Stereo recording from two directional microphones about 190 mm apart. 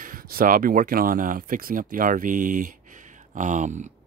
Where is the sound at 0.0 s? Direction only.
50° right (ahead or behind).